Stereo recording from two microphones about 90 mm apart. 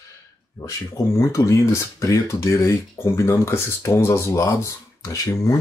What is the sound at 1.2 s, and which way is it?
Speech, 35° left (ahead or behind).